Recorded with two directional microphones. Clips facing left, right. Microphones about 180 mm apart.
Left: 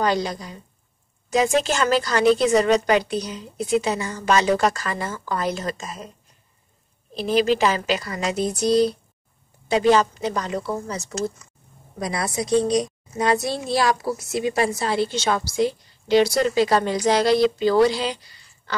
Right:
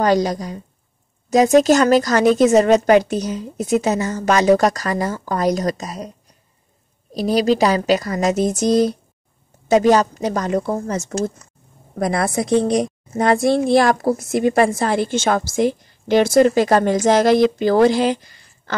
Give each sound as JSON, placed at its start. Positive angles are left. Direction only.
{"t": 0.0, "sound": "a child's voice", "side_deg": -45}